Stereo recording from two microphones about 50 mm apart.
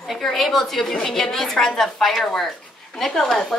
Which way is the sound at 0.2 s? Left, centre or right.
Centre.